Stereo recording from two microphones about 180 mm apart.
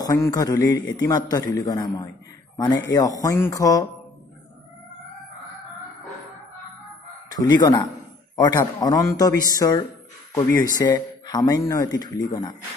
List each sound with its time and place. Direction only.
0.0 s speech: 20° left (ahead or behind)
7.3 s speech: 20° left (ahead or behind)